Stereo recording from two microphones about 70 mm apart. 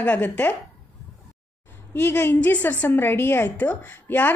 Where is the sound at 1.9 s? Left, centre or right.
Left.